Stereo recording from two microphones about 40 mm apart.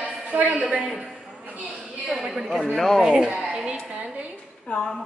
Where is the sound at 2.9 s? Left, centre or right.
Centre.